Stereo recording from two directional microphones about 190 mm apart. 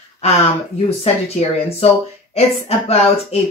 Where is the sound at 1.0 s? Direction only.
35° left (ahead or behind).